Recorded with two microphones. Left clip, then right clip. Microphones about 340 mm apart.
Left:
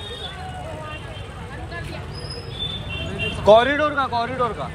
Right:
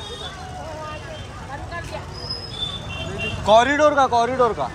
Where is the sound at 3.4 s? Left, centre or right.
Centre.